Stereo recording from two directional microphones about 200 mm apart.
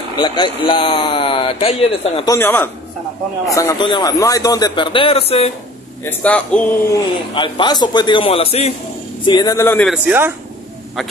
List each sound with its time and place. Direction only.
0.2 s speech: 25° left (ahead or behind)
2.2 s speech: 10° left (ahead or behind); by 5.5 s 30° left (ahead or behind)
6.0 s speech: 5° left (ahead or behind)
6.9 s speech: 20° left (ahead or behind)
9.8 s speech: 10° right (ahead or behind)